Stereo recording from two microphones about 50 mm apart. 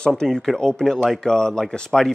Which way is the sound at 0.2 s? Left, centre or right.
Centre.